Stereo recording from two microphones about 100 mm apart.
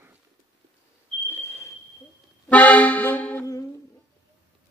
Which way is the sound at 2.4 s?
15° left (ahead or behind).